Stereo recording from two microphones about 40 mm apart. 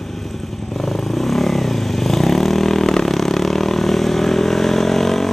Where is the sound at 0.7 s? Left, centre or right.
Centre.